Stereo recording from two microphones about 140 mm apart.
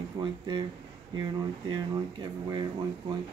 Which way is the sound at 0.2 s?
30° right (ahead or behind).